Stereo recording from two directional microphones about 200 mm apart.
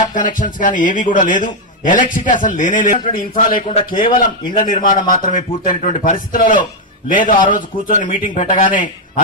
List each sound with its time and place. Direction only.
0.0 s a man's voice: 40° left (ahead or behind)
3.6 s a man's voice: 30° left (ahead or behind)
4.6 s a man's voice: 45° left (ahead or behind)